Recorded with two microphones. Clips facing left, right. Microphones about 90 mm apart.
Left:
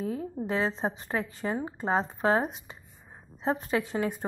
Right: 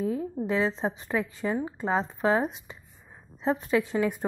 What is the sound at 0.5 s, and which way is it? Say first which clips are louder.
A woman's voice: right 2 dB; 45° left (ahead or behind).